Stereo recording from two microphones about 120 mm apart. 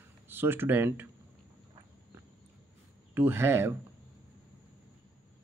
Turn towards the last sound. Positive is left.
turn(degrees=-20)  # may be behind; listen again after turning